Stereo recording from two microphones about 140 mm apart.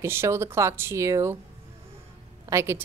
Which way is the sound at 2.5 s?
20° right (ahead or behind).